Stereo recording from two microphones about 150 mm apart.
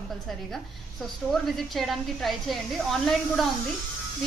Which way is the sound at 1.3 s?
Centre (ahead or behind).